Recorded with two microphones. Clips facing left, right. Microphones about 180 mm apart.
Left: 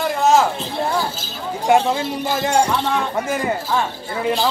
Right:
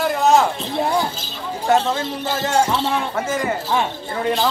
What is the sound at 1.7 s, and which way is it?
Speech, 10° left (ahead or behind).